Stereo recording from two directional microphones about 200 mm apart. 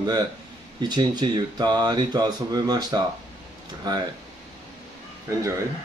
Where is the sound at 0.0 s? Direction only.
20° right (ahead or behind).